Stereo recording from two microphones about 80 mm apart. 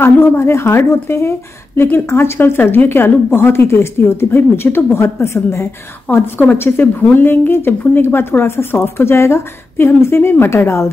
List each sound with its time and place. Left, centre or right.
0.0 s a woman's voice: left